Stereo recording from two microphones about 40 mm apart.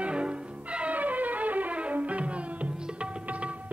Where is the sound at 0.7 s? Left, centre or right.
Right.